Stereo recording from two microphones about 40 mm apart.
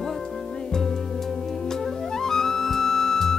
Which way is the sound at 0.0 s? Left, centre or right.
Centre.